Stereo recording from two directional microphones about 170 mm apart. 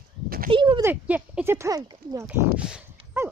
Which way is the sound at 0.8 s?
10° right (ahead or behind).